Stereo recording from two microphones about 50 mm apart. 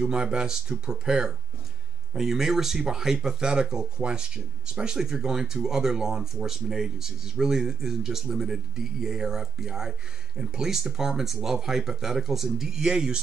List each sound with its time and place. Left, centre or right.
0.0 s speech: centre